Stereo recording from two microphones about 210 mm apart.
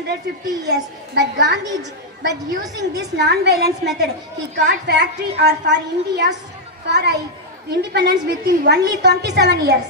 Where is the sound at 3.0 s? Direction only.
50° right (ahead or behind).